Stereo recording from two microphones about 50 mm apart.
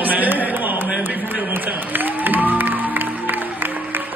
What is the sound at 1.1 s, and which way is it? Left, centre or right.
Music, right.